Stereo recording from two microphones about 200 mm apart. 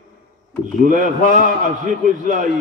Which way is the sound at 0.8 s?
40° right (ahead or behind).